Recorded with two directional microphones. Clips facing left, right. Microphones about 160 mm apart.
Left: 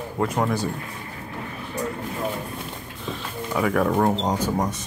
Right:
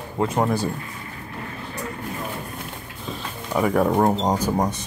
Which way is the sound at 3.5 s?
30° right (ahead or behind).